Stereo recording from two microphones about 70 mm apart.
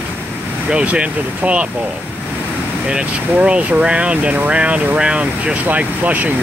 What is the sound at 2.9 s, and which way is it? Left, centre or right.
Speech, centre.